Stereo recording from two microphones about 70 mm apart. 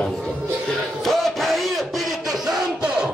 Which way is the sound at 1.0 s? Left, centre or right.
Centre.